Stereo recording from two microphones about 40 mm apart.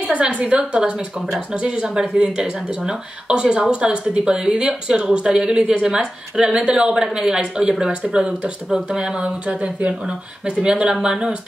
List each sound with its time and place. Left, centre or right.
0.0 s a woman's voice: right; by 9.1 s centre
9.5 s a woman's voice: right